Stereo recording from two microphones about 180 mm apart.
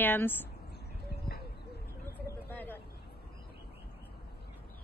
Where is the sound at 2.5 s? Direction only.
10° left (ahead or behind).